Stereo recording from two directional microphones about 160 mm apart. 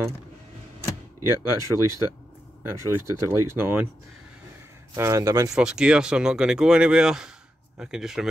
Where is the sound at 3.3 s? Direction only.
15° right (ahead or behind).